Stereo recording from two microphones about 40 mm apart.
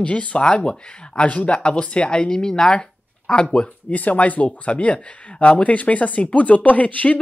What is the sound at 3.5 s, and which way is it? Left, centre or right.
Speech, left.